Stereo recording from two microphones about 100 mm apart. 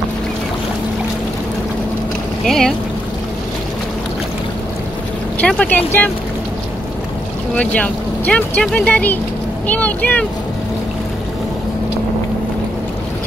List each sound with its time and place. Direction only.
2.4 s speech: 5° left (ahead or behind)
5.6 s speech: 20° left (ahead or behind)
7.5 s speech: 10° left (ahead or behind)